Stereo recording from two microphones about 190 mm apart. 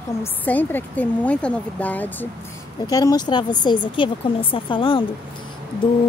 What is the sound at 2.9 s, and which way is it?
Speech, 20° left (ahead or behind).